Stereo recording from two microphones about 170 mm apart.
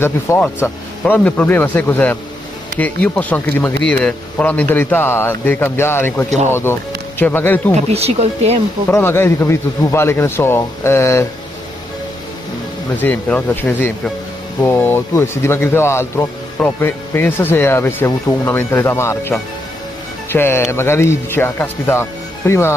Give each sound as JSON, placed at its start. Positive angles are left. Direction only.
{"t": 0.0, "sound": "speech", "side_deg": 15}
{"t": 7.7, "sound": "speech", "side_deg": -35}
{"t": 8.9, "sound": "speech", "side_deg": 15}
{"t": 13.0, "sound": "speech", "side_deg": 10}